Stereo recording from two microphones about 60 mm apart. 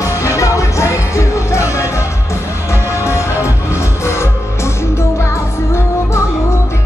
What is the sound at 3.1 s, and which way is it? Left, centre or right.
Music, left.